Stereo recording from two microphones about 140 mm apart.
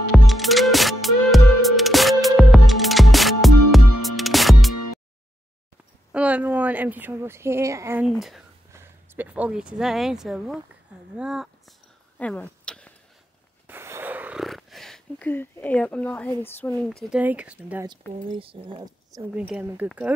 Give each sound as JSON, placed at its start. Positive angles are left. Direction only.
{"t": 0.1, "sound": "music", "side_deg": 0}
{"t": 6.1, "sound": "speech", "side_deg": -10}
{"t": 8.0, "sound": "speech", "side_deg": 0}
{"t": 8.7, "sound": "speech", "side_deg": -15}
{"t": 12.2, "sound": "a sound", "side_deg": 10}
{"t": 13.7, "sound": "a sound", "side_deg": -15}
{"t": 14.4, "sound": "a sound", "side_deg": 0}
{"t": 15.2, "sound": "speech", "side_deg": 15}
{"t": 17.1, "sound": "speech", "side_deg": -10}
{"t": 18.4, "sound": "speech", "side_deg": -35}
{"t": 19.3, "sound": "speech", "side_deg": -10}